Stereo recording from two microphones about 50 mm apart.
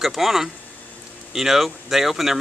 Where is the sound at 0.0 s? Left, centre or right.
Centre.